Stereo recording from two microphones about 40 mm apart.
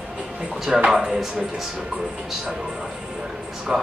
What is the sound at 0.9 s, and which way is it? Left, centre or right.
Speech, centre.